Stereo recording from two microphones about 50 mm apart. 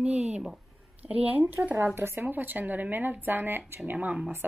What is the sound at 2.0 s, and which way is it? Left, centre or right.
Speech, right.